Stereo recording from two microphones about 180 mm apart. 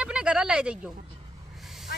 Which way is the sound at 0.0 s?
5° right (ahead or behind).